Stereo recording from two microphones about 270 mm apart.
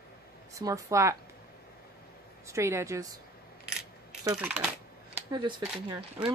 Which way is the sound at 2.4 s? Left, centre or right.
Centre.